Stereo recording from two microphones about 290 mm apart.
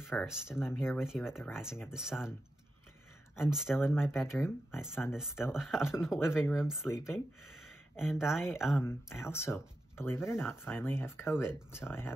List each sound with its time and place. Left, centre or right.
0.0 s speech: centre
3.3 s speech: centre
7.9 s speech: centre